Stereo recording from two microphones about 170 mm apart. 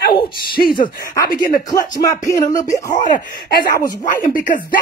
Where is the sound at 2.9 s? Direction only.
50° left (ahead or behind).